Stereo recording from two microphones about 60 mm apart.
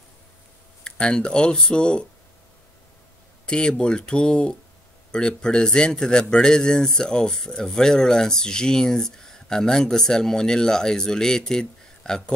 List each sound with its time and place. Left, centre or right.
0.8 s a man's voice: centre
3.4 s a man's voice: centre